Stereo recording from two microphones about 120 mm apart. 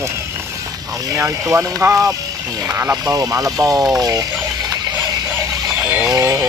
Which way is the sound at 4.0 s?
30° right (ahead or behind).